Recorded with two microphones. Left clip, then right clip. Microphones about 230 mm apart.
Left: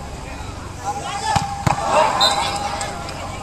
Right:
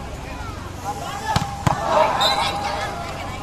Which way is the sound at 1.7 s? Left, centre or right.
Centre.